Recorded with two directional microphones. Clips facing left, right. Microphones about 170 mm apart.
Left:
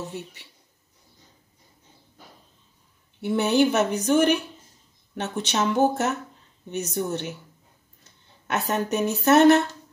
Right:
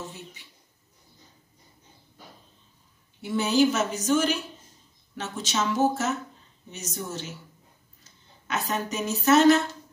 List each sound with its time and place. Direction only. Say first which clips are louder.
0.1 s a woman's voice: left 7 dB; 65° left (ahead or behind)
3.2 s a woman's voice: left 2 dB; 65° left (ahead or behind)